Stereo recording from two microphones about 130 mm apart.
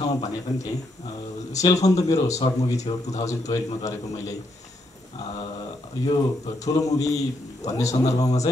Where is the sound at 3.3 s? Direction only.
25° left (ahead or behind).